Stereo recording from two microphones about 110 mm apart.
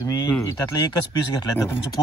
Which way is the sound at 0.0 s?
35° left (ahead or behind).